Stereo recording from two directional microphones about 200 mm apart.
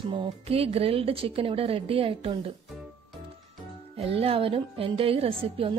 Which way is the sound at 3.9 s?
30° right (ahead or behind).